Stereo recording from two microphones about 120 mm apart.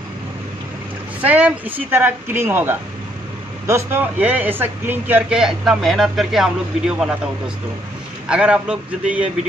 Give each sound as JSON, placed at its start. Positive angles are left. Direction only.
{"t": 1.2, "sound": "speech", "side_deg": -15}
{"t": 8.3, "sound": "speech", "side_deg": -10}